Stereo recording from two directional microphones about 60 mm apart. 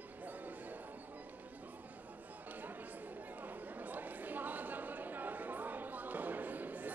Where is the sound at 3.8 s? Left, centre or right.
Right.